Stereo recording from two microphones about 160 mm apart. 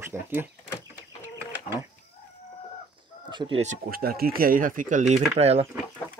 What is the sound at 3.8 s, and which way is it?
Speech, 70° right (ahead or behind).